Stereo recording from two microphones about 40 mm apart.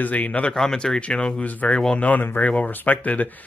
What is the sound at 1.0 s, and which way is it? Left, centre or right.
Speech, left.